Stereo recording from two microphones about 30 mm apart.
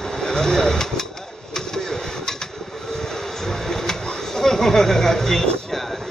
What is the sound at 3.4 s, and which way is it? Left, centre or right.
Printer, centre.